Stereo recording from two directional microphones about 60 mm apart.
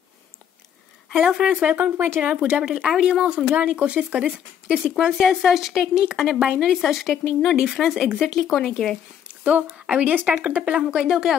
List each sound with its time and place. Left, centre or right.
1.1 s speech: centre
1.8 s speech: right
2.2 s a woman's voice: right; by 8.9 s centre
9.4 s speech: right; by 11.3 s centre